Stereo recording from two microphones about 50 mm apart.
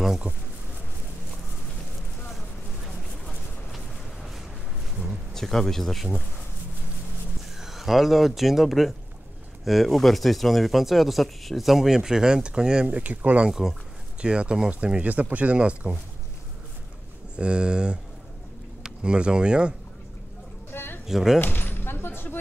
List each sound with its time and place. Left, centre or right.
5.3 s speech: centre
7.5 s speech: centre
12.8 s speech: right
13.5 s speech: centre
14.2 s speech: centre
17.4 s speech: centre
20.7 s a sound: left
21.1 s speech: centre
21.4 s a sound: left